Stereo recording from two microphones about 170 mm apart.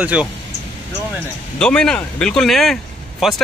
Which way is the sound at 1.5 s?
5° left (ahead or behind).